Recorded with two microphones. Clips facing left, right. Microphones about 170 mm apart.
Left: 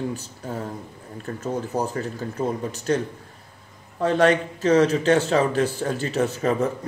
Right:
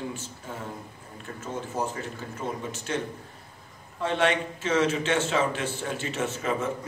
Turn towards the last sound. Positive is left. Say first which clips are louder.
# left 6 dB
turn(degrees=35)  # may be behind; listen again after turning